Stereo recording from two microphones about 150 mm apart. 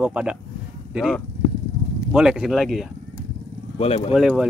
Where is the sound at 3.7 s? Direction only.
40° left (ahead or behind).